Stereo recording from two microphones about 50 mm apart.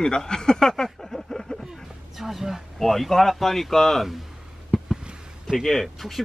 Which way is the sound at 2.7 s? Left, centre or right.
Centre.